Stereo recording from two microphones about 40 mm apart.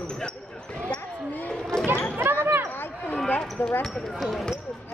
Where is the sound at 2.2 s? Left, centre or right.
Right.